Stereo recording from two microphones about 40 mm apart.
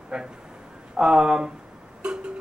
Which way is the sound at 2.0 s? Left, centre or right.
Right.